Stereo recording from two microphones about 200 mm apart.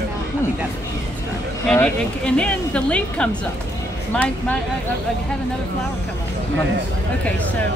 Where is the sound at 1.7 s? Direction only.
5° left (ahead or behind).